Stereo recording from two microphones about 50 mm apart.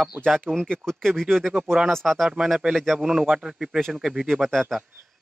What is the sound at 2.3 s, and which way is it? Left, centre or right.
Speech, centre.